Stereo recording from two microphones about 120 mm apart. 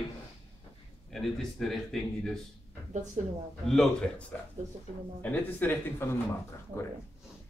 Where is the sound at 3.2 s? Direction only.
70° right (ahead or behind).